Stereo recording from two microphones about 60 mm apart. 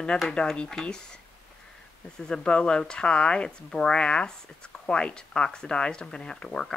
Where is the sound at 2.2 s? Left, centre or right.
Centre.